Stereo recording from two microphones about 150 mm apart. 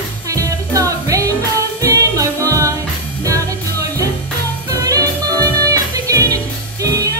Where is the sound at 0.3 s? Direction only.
20° right (ahead or behind).